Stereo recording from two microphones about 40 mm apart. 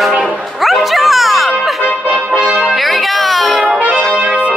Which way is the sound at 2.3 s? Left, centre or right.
Right.